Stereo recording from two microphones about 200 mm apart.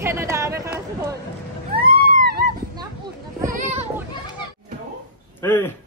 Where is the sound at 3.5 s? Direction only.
30° right (ahead or behind).